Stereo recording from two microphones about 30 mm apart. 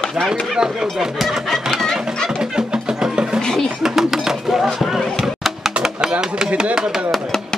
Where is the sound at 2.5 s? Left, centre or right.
Right.